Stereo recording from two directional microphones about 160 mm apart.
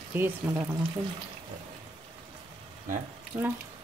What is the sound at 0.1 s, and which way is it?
Speech, 15° right (ahead or behind).